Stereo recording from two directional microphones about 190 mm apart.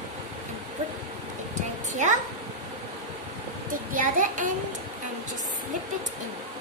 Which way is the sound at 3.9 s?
45° right (ahead or behind).